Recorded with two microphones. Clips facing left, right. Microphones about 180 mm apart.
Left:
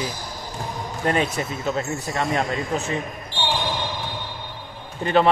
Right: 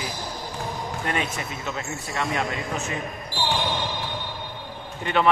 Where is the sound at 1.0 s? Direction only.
35° left (ahead or behind).